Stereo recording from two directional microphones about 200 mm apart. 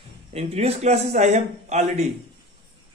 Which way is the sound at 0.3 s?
30° right (ahead or behind).